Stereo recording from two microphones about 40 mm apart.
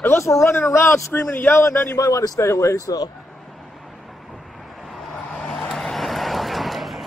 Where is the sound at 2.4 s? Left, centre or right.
Left.